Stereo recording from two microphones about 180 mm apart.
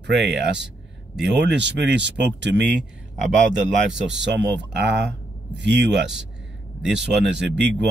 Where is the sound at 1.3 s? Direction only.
75° right (ahead or behind).